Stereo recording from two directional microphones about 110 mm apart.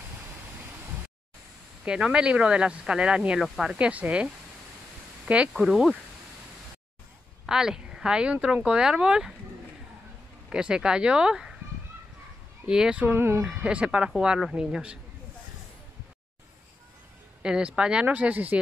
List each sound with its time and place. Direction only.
1.9 s speech: 10° right (ahead or behind)
3.7 s speech: 15° right (ahead or behind)
7.4 s speech: 5° right (ahead or behind)
10.5 s speech: 5° right (ahead or behind)
12.6 s speech: 5° right (ahead or behind)
13.1 s speech: 20° right (ahead or behind)
13.4 s speech: 5° right (ahead or behind)
17.4 s speech: 10° right (ahead or behind)